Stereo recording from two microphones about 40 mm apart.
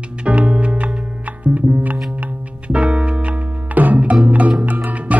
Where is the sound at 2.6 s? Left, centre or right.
Right.